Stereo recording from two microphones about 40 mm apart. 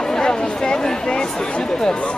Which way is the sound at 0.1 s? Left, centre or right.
Centre.